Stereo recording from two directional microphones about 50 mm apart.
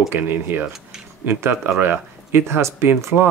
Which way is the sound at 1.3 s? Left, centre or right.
Right.